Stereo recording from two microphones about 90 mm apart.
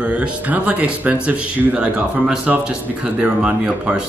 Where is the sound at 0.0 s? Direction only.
15° right (ahead or behind).